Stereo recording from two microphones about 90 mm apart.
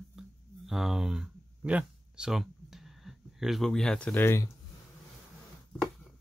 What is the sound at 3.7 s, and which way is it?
Speech, 10° left (ahead or behind).